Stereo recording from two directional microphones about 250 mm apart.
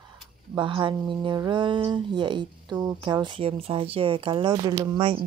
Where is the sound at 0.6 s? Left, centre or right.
Centre.